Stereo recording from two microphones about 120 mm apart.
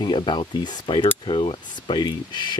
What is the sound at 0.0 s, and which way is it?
Speech, 40° left (ahead or behind).